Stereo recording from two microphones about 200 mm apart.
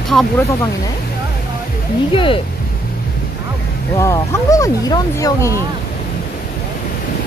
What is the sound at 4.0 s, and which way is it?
Speech, 15° left (ahead or behind).